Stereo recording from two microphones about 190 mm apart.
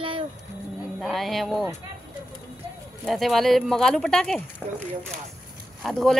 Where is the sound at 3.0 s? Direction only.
Centre (ahead or behind).